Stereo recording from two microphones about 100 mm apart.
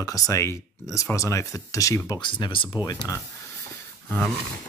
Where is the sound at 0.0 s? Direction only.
35° left (ahead or behind).